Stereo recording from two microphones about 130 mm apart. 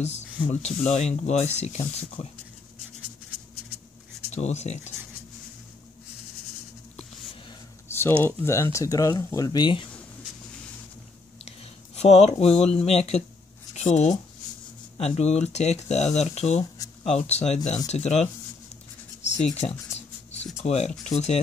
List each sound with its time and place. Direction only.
0.5 s speech: 60° left (ahead or behind)
4.3 s speech: 60° left (ahead or behind)
8.2 s speech: 20° left (ahead or behind); by 9.8 s 35° left (ahead or behind)
11.4 s speech: 55° left (ahead or behind)